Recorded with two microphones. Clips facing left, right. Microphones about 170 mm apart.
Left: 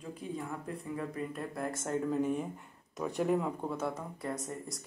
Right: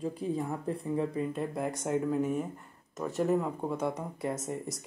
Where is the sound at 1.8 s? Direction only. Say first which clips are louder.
Right 2 dB; 5° right (ahead or behind).